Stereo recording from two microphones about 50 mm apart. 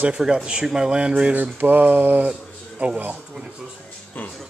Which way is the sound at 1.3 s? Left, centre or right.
Right.